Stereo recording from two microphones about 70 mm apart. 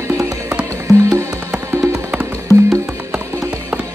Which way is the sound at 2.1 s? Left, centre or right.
Right.